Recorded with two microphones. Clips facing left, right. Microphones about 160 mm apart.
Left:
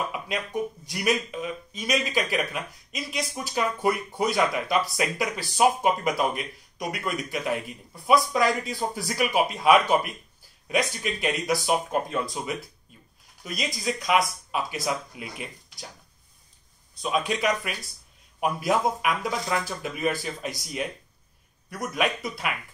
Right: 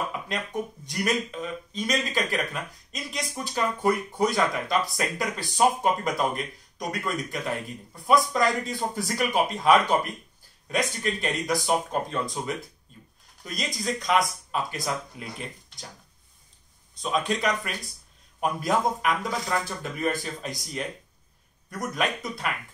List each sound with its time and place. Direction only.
0.1 s a sound: 10° left (ahead or behind)
0.8 s speech: 10° left (ahead or behind)
17.0 s speech: 5° left (ahead or behind)